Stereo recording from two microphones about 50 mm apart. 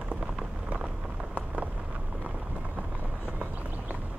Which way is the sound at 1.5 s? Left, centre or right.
Right.